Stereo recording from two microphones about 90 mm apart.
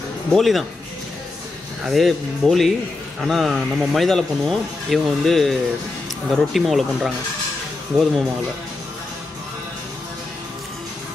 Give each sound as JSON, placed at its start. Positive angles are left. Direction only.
{"t": 0.3, "sound": "speech", "side_deg": 0}
{"t": 1.8, "sound": "speech", "side_deg": 0}